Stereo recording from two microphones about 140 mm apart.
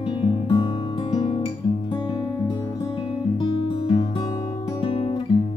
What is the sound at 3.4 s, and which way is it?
Music, 40° left (ahead or behind).